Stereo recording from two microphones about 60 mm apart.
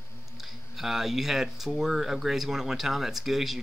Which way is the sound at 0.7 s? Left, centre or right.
Centre.